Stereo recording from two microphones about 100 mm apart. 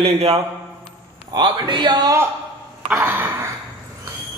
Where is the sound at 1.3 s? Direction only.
50° right (ahead or behind).